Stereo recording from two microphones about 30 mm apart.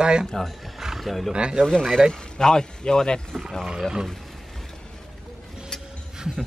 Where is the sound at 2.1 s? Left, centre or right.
Left.